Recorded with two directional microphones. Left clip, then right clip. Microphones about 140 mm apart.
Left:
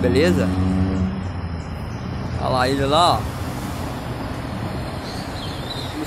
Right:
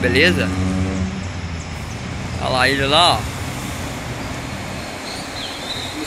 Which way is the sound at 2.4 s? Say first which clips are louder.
Right 3 dB; 20° left (ahead or behind).